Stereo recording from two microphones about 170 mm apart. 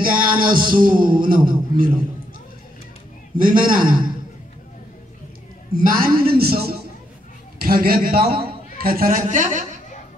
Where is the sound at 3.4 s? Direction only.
55° right (ahead or behind).